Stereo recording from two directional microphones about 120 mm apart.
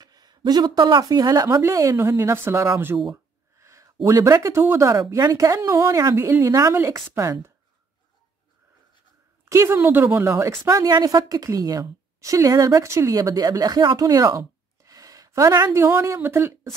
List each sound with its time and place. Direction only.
0.0 s a woman's voice: 35° right (ahead or behind)
9.4 s a woman's voice: 20° right (ahead or behind)